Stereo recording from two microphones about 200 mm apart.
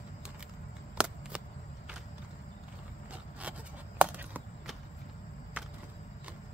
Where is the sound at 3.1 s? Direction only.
5° right (ahead or behind).